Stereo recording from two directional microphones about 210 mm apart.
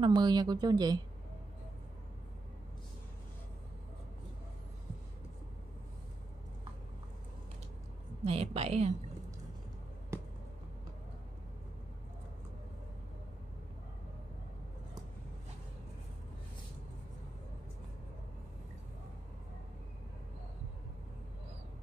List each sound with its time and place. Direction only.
0.0 s speech: 20° right (ahead or behind)
8.2 s speech: 30° right (ahead or behind)